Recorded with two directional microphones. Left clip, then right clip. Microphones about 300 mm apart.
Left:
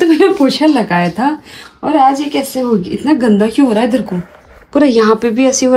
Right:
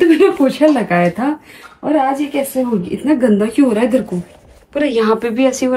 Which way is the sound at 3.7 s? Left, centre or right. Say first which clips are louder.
Left 2 dB; centre.